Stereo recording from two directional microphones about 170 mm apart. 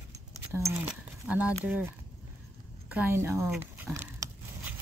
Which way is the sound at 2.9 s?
10° right (ahead or behind).